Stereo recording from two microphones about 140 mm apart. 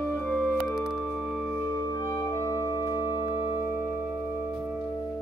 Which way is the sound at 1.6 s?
25° left (ahead or behind).